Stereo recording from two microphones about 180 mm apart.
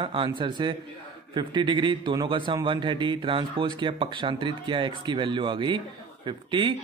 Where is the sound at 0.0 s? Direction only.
30° right (ahead or behind).